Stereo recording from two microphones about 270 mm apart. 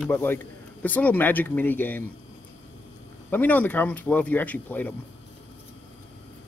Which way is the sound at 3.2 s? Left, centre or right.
Centre.